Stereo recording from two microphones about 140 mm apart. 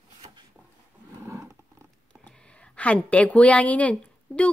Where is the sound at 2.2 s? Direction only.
10° left (ahead or behind).